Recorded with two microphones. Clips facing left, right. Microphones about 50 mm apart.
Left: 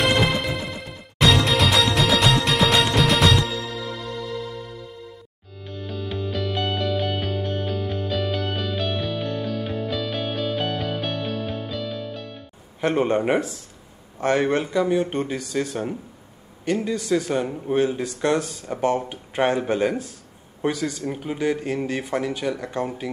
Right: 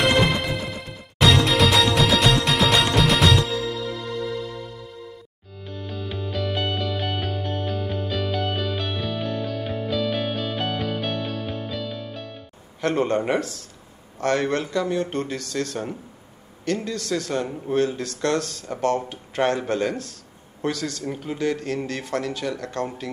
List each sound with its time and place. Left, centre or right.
0.0 s music: centre
5.9 s music: centre
12.8 s a man's voice: centre